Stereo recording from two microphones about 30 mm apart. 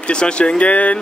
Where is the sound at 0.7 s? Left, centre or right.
Left.